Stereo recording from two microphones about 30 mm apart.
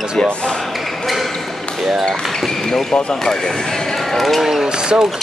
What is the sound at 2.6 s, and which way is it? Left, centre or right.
Speech, centre.